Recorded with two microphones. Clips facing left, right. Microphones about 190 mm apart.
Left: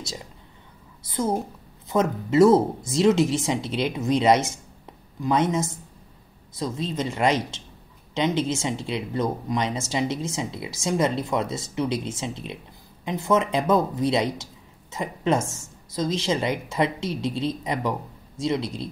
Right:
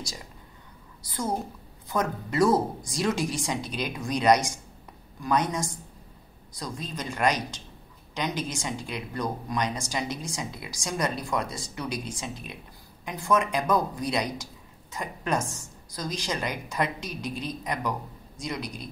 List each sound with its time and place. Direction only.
1.0 s a woman's voice: 20° left (ahead or behind)